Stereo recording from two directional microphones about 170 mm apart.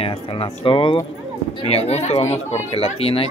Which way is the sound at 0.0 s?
35° left (ahead or behind).